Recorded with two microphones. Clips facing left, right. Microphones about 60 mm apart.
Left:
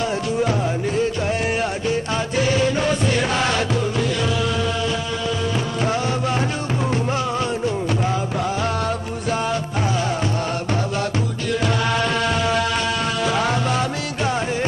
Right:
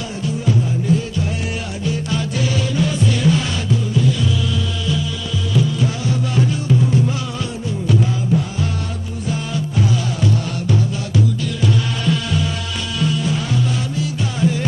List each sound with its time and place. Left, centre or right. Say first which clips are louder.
0.5 s music: right 3 dB; left
6.3 s music: right 4 dB; left
13.0 s music: right 1 dB; left